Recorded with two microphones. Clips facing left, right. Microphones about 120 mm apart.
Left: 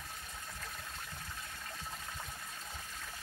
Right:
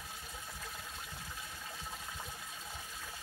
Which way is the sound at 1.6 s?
10° right (ahead or behind).